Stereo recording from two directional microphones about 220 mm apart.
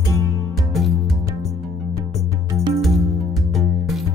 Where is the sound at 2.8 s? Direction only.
Centre (ahead or behind).